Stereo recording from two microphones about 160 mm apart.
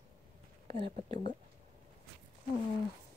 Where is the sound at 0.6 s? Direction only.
35° right (ahead or behind).